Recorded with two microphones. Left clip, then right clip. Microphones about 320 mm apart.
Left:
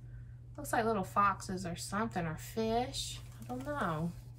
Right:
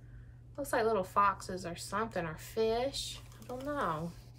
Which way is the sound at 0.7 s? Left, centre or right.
Centre.